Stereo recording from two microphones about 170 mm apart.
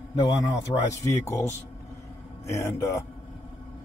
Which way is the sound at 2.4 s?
15° left (ahead or behind).